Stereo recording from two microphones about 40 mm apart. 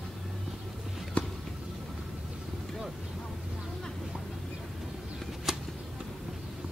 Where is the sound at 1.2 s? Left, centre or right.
Left.